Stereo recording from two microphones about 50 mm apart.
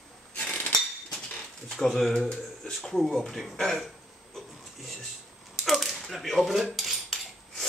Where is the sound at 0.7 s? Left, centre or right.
Centre.